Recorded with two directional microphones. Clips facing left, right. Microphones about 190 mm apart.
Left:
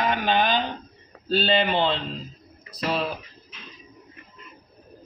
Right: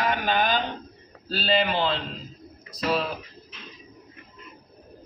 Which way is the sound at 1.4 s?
30° left (ahead or behind).